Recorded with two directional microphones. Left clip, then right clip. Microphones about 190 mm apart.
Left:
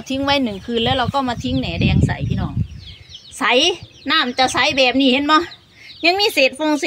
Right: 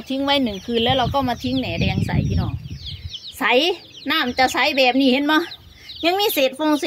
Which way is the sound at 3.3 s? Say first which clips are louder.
Left 2 dB; centre (ahead or behind).